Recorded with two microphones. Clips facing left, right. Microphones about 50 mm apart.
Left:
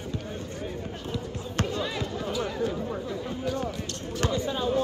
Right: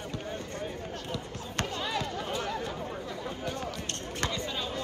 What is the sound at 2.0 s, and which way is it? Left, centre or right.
Chatter, right.